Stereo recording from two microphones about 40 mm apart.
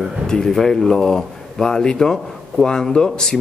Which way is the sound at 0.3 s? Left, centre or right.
Centre.